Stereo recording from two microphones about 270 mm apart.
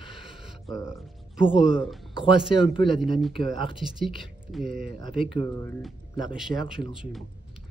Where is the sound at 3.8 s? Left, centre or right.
Centre.